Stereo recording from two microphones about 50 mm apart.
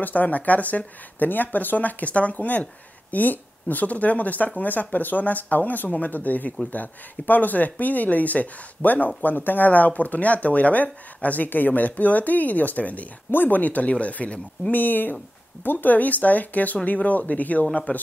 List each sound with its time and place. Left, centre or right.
0.0 s speech: left
14.7 s speech: left